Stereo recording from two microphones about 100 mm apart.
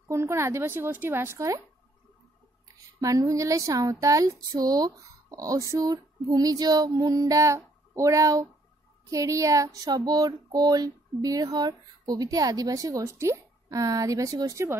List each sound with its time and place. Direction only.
0.1 s a woman's voice: 30° right (ahead or behind)
3.0 s a woman's voice: 35° right (ahead or behind)